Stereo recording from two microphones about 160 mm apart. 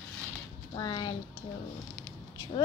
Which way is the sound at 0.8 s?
30° left (ahead or behind).